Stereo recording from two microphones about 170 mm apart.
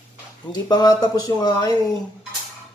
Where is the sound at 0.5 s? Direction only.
25° left (ahead or behind).